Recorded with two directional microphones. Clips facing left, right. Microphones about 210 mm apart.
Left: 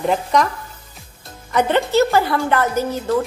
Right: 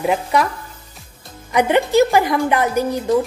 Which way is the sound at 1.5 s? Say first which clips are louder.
Right 2 dB; 15° right (ahead or behind).